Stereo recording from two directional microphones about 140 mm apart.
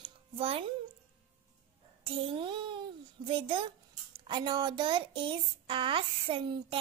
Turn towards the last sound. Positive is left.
turn(degrees=-40)  # may be behind; listen again after turning